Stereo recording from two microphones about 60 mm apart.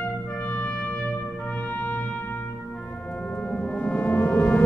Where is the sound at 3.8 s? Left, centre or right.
Left.